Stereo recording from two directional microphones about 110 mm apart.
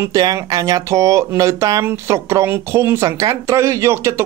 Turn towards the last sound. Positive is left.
turn(degrees=-25)  # may be behind; listen again after turning